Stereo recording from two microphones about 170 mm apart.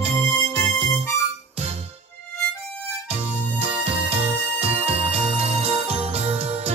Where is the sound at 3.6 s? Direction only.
35° right (ahead or behind).